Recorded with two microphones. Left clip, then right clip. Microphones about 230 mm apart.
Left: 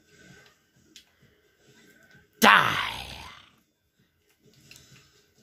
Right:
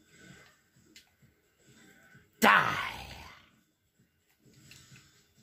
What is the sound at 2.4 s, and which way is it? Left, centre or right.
Groan, left.